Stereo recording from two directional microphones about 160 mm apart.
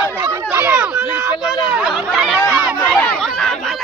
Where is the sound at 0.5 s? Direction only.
10° right (ahead or behind).